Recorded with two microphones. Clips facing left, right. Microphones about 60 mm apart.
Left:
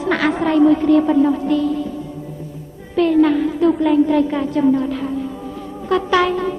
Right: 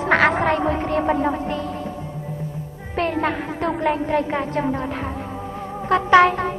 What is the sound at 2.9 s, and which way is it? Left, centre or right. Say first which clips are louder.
Music: left 8 dB; right.